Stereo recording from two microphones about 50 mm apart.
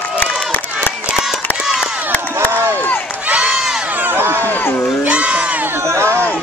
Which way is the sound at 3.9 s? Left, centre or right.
Right.